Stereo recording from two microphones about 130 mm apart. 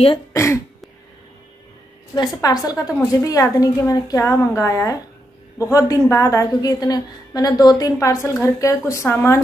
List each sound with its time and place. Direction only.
0.3 s throat clearing: 20° left (ahead or behind)
2.1 s a woman's voice: 30° left (ahead or behind)